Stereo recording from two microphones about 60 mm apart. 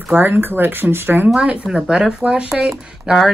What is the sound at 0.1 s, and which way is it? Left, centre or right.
Speech, right.